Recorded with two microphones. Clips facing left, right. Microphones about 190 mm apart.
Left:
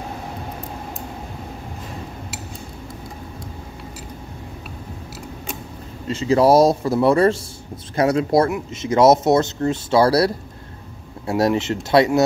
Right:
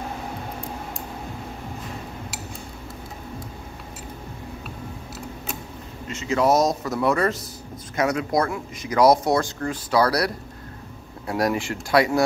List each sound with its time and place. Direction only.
6.0 s speech: 35° left (ahead or behind)